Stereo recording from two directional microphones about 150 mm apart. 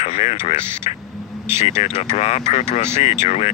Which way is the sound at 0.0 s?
45° left (ahead or behind).